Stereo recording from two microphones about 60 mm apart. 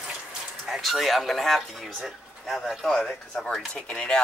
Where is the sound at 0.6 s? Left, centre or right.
Centre.